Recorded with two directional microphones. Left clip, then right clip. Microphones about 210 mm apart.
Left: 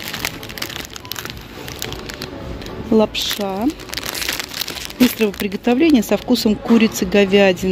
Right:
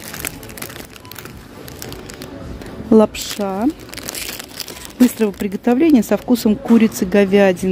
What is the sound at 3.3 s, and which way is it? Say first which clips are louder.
Speech: right 1 dB; 15° right (ahead or behind).